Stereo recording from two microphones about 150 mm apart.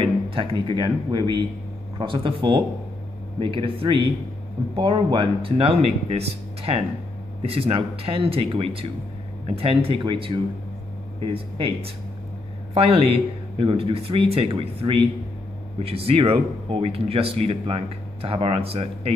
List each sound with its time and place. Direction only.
0.0 s speech: 35° right (ahead or behind)
7.4 s speech: 40° right (ahead or behind)